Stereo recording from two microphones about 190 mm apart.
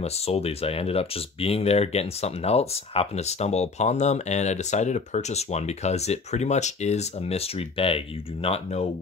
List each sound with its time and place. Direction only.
0.0 s speech: 30° left (ahead or behind)